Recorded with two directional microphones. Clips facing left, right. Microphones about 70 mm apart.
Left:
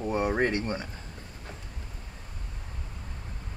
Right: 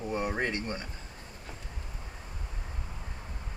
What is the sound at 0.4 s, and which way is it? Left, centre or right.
Speech, left.